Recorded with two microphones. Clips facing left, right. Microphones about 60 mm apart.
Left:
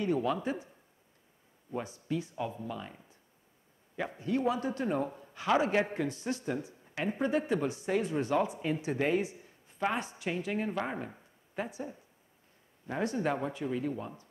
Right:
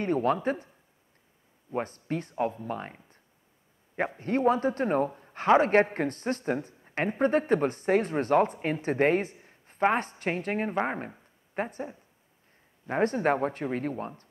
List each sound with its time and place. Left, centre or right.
0.0 s a woman's voice: right
1.7 s a woman's voice: right
4.2 s a man's voice: right